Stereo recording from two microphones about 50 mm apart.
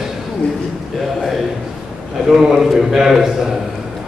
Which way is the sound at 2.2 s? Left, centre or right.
Centre.